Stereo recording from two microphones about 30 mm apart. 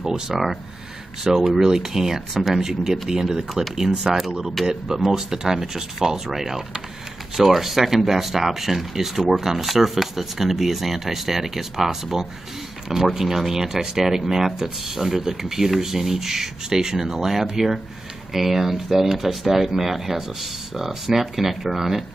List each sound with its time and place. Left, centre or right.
0.3 s speech: centre
2.3 s speech: centre
2.6 s speech: centre
4.6 s speech: centre